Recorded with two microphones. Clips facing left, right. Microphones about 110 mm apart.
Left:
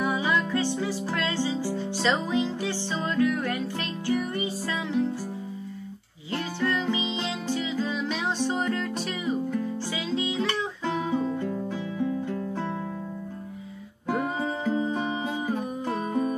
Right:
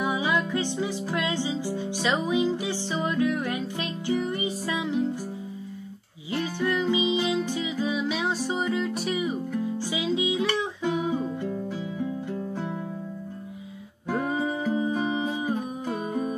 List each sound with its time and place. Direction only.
0.0 s music: 15° right (ahead or behind)
6.3 s music: 15° right (ahead or behind)
14.2 s music: 15° right (ahead or behind)